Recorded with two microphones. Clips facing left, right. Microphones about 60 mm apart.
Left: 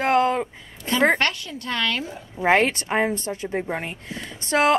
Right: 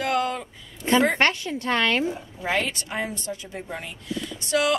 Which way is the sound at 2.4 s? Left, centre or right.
Left.